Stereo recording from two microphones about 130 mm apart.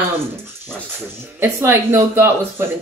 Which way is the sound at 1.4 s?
20° right (ahead or behind).